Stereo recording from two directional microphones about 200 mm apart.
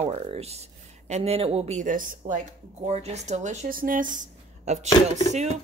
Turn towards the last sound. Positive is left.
turn(degrees=20)  # may be behind; listen again after turning